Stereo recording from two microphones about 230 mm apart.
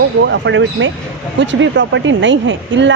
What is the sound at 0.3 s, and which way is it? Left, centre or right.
Speech, right.